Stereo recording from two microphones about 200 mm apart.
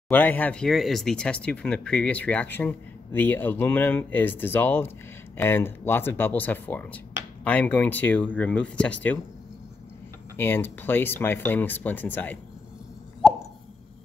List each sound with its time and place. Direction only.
0.1 s speech: 10° left (ahead or behind)
10.3 s speech: 10° left (ahead or behind)